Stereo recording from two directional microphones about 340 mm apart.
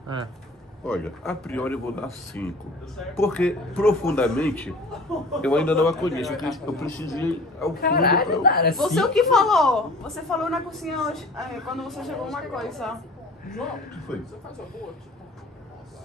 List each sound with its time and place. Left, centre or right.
0.8 s a woman's voice: centre
7.8 s speech: left
8.7 s a woman's voice: centre